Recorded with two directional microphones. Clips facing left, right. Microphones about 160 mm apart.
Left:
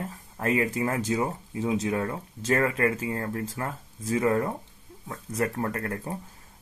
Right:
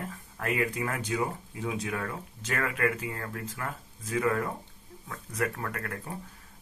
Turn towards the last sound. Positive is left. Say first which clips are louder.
# left 6 dB
turn(degrees=25)  # may be behind; listen again after turning